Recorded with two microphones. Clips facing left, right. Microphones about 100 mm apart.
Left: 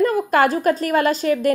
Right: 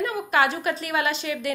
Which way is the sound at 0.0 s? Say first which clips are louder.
Left 6 dB; 45° left (ahead or behind).